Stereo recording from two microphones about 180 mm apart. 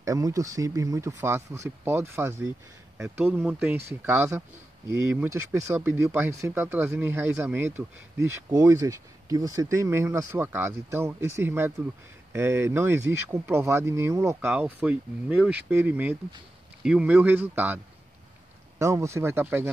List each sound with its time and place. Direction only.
0.0 s speech: 20° right (ahead or behind)
18.8 s speech: 15° right (ahead or behind)